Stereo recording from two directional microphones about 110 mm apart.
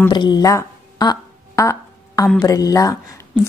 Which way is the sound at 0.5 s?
35° left (ahead or behind).